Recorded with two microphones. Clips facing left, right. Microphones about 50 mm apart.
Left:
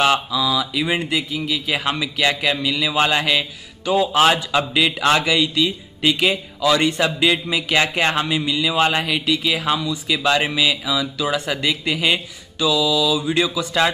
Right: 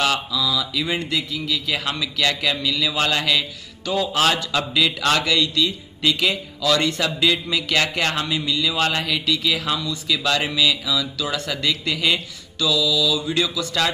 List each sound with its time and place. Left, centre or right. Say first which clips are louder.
0.0 s speech: left 4 dB; left